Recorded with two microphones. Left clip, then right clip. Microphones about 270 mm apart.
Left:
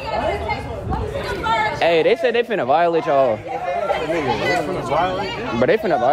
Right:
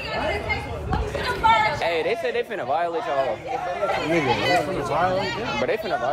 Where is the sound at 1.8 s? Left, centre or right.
Left.